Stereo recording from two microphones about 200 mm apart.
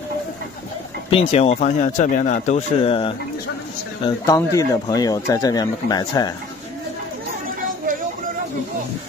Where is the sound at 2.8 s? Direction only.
25° left (ahead or behind).